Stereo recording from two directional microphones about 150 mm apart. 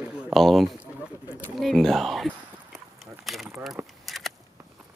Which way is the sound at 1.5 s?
Centre (ahead or behind).